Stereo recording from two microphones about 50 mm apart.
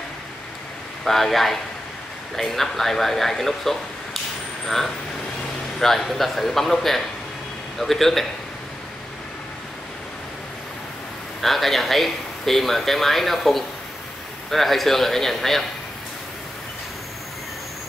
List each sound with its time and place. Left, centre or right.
1.0 s speech: centre
11.4 s speech: centre